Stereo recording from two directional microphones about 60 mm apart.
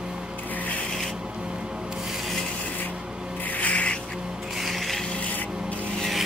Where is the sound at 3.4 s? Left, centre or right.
Left.